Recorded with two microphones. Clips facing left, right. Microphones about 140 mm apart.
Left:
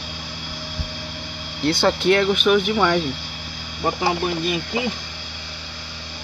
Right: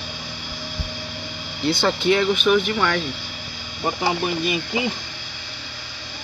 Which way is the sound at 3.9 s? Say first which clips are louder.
Left 1 dB; centre (ahead or behind).